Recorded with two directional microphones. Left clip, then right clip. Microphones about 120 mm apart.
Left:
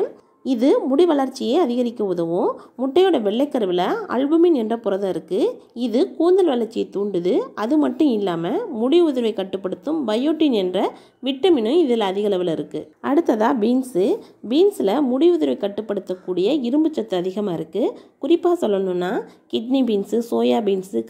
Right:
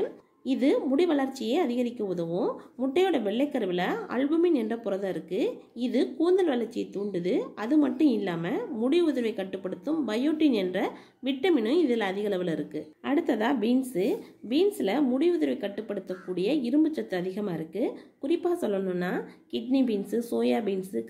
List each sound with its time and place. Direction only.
0.4 s a woman's voice: 40° left (ahead or behind)
13.2 s a woman's voice: 35° left (ahead or behind); by 21.1 s 50° left (ahead or behind)